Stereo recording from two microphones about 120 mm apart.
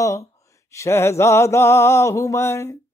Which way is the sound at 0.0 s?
25° left (ahead or behind).